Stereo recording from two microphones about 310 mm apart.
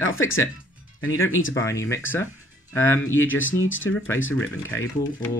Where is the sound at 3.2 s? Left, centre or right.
Left.